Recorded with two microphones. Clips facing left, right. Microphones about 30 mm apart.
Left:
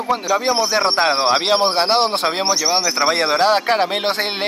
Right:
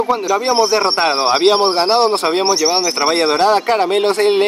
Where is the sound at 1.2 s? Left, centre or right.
Centre.